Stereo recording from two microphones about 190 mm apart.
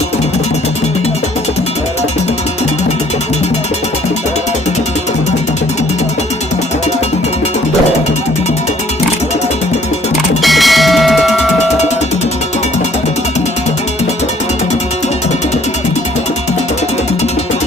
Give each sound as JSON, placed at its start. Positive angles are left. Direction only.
{"t": 10.4, "sound": "music", "side_deg": 0}